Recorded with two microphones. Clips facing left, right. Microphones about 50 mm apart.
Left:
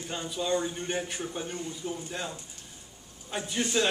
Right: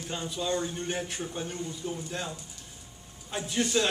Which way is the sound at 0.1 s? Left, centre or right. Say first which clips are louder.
Left 1 dB; centre.